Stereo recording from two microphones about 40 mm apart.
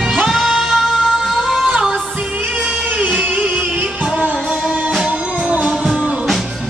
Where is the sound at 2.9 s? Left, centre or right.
Right.